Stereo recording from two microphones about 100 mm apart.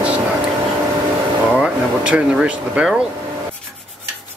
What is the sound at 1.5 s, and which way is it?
Speech, 15° right (ahead or behind).